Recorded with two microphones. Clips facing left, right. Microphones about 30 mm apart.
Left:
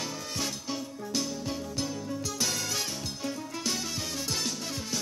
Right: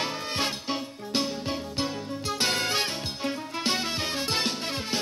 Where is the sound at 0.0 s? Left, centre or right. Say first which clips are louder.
Right 5 dB; right.